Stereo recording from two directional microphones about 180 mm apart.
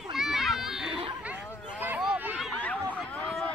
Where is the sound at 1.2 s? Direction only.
10° right (ahead or behind).